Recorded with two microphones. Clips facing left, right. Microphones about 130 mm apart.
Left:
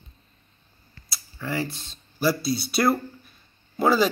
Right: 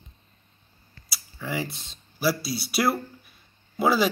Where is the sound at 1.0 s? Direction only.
10° right (ahead or behind).